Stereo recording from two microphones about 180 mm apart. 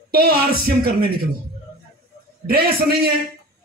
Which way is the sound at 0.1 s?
55° right (ahead or behind).